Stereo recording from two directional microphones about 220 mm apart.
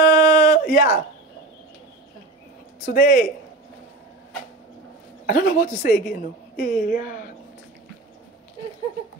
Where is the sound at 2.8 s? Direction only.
40° left (ahead or behind).